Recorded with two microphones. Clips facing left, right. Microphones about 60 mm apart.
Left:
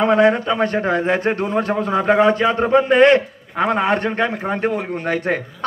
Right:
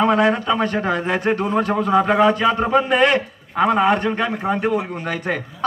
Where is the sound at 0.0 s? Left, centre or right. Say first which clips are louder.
Left 2 dB; left.